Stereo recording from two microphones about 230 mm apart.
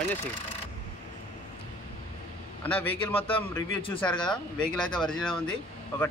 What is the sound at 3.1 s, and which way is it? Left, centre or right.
Speech, left.